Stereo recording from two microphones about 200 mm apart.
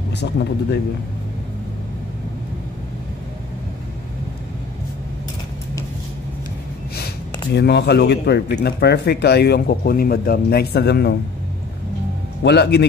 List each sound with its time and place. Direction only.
0.2 s a man's voice: 55° left (ahead or behind)
7.5 s a man's voice: 55° left (ahead or behind)
12.4 s a man's voice: 55° left (ahead or behind)